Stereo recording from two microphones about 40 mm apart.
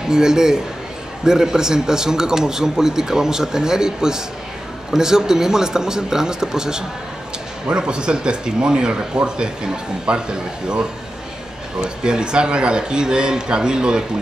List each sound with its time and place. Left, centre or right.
0.1 s a man's voice: centre